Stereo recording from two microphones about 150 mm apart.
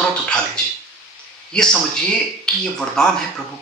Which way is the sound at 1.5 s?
5° left (ahead or behind).